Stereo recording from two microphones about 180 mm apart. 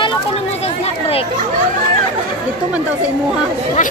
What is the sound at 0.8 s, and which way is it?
Children playing, 35° left (ahead or behind).